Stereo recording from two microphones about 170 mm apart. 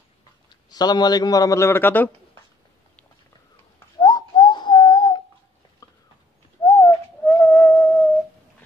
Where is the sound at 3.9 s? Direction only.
25° left (ahead or behind).